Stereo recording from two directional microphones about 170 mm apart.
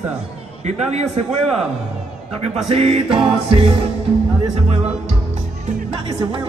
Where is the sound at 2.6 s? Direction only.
35° right (ahead or behind).